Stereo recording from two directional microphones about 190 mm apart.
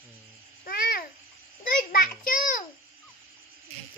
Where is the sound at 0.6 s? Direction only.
50° left (ahead or behind).